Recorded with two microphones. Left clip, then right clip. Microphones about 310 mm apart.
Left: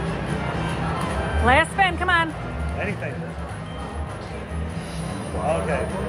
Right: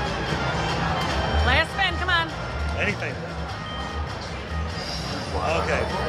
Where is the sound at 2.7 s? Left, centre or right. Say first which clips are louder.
Right 3 dB; centre.